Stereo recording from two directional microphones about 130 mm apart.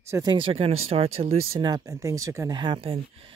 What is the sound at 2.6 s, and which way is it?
Speech, 40° right (ahead or behind).